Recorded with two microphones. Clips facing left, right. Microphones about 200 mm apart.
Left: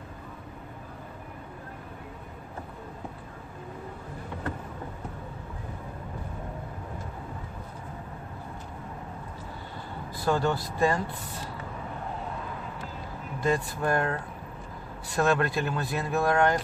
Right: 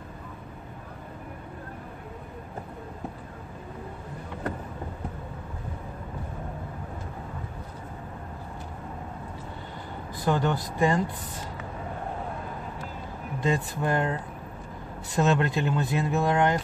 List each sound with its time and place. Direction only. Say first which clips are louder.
10.2 s speech: even; 15° right (ahead or behind)
13.4 s speech: even; 20° right (ahead or behind)
15.1 s speech: right 1 dB; 20° right (ahead or behind)